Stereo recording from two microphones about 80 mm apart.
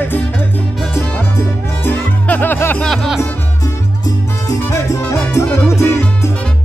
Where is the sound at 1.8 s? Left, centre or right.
Left.